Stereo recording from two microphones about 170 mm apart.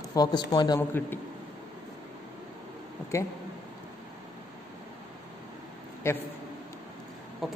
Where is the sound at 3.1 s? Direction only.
15° left (ahead or behind).